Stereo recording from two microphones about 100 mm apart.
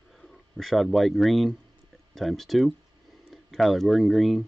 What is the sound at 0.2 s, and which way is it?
Speech, centre (ahead or behind).